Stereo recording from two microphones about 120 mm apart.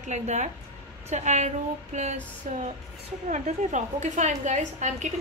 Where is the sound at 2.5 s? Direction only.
90° right.